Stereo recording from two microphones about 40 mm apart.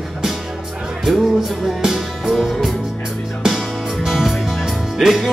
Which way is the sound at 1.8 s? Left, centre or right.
Centre.